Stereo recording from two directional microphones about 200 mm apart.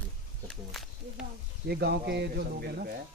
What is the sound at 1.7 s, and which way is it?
Speech, 55° right (ahead or behind).